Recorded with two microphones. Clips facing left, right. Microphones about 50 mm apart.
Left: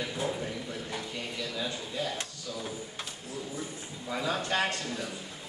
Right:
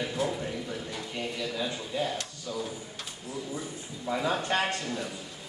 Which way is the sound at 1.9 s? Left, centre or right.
Right.